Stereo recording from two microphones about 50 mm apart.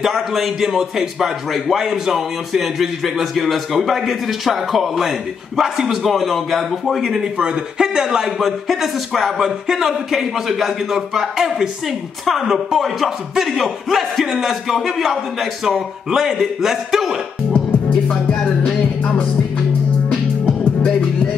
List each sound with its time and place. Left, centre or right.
0.0 s speech: centre
7.3 s speech: centre
18.0 s music: centre